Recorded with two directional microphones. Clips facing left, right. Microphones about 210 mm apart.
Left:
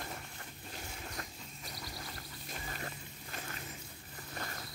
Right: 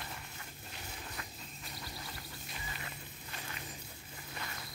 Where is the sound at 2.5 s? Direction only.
45° left (ahead or behind).